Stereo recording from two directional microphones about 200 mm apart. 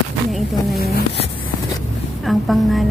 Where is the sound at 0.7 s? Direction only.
50° left (ahead or behind).